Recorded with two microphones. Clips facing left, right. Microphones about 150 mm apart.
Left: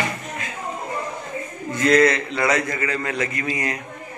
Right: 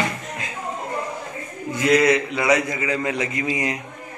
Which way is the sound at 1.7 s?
10° right (ahead or behind).